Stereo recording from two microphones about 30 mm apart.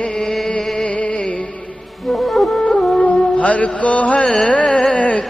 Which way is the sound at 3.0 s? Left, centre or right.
Left.